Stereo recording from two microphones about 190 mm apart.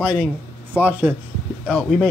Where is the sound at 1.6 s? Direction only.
5° left (ahead or behind).